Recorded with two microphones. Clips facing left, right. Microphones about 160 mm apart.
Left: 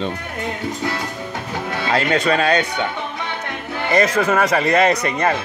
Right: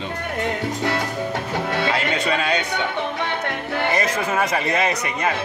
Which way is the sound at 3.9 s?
75° left (ahead or behind).